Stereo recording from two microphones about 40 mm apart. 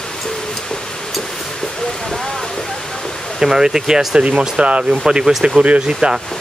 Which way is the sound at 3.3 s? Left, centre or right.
Centre.